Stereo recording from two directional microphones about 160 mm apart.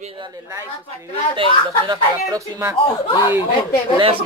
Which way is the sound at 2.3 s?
20° right (ahead or behind).